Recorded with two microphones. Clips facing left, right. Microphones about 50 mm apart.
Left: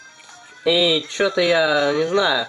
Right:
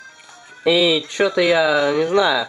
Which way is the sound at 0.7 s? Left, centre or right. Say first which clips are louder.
Right 2 dB; centre.